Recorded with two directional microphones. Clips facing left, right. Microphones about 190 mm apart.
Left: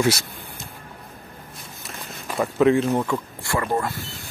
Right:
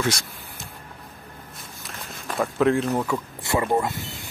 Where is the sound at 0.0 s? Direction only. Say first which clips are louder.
Left 5 dB; 5° left (ahead or behind).